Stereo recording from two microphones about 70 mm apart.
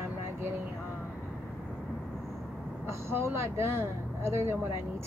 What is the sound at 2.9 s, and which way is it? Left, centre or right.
Speech, right.